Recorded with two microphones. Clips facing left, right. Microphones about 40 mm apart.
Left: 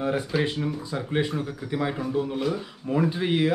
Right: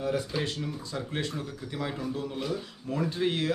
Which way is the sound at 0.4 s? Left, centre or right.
Left.